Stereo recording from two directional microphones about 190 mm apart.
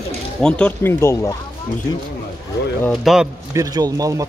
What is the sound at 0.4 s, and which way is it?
Speech, 5° left (ahead or behind).